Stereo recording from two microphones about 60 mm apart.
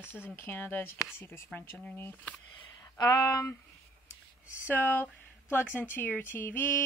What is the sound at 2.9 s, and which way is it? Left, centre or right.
Speech, left.